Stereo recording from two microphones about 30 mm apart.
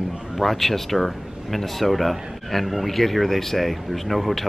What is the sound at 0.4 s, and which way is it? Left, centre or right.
Speech, centre.